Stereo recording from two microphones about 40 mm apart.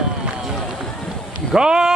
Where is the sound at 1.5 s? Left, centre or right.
Centre.